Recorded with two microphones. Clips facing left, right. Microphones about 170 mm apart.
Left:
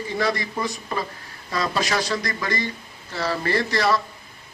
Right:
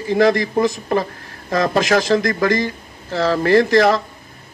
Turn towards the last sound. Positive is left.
turn(degrees=-45)  # may be behind; listen again after turning